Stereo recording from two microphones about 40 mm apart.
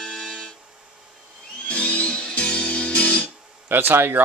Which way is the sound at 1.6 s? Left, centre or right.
Left.